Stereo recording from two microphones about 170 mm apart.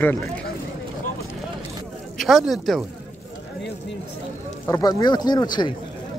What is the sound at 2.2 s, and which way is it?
Speech, centre (ahead or behind).